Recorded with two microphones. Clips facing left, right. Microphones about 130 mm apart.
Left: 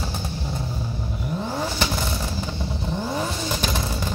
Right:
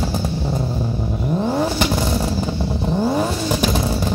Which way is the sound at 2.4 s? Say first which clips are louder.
Right 7 dB; 40° right (ahead or behind).